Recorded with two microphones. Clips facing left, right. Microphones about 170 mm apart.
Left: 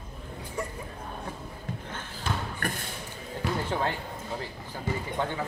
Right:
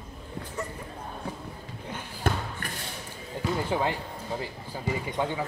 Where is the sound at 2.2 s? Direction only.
55° right (ahead or behind).